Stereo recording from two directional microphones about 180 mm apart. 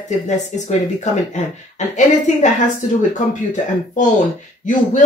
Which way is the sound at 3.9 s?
45° left (ahead or behind).